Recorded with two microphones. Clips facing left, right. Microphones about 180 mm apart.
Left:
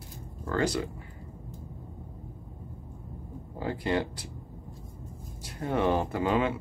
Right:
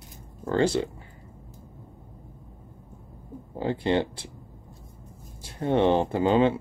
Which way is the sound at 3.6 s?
25° right (ahead or behind).